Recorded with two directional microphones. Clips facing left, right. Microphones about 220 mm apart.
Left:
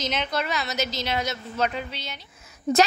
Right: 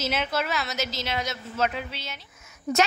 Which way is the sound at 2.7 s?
25° left (ahead or behind).